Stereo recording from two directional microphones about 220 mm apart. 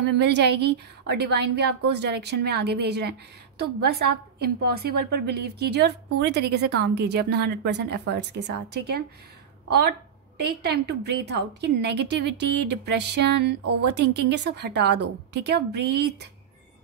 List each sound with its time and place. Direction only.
0.0 s a woman's voice: 50° right (ahead or behind)